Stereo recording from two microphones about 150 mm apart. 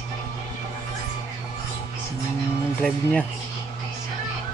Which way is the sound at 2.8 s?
5° left (ahead or behind).